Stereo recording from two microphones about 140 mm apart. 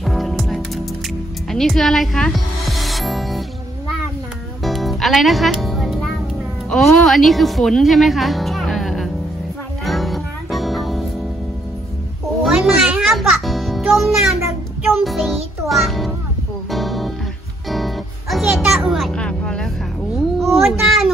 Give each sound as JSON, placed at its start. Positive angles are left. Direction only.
{"t": 0.0, "sound": "music", "side_deg": 0}
{"t": 4.6, "sound": "music", "side_deg": 0}
{"t": 6.7, "sound": "speech", "side_deg": 5}
{"t": 9.8, "sound": "music", "side_deg": 0}
{"t": 12.4, "sound": "music", "side_deg": -5}
{"t": 18.9, "sound": "vehicle", "side_deg": 0}
{"t": 20.2, "sound": "a sound", "side_deg": 0}